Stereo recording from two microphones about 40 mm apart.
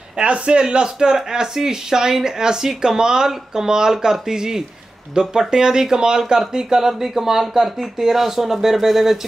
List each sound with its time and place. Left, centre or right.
0.2 s speech: right; by 9.2 s centre